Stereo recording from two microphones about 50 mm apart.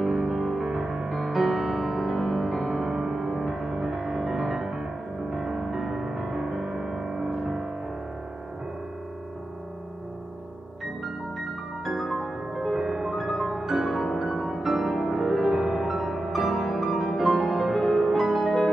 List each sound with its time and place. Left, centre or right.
0.0 s music: centre
11.8 s music: centre